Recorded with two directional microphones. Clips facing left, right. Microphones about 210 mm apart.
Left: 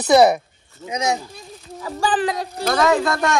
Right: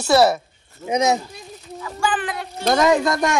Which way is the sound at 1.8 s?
35° left (ahead or behind).